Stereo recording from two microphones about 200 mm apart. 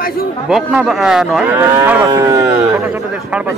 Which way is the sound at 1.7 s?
10° right (ahead or behind).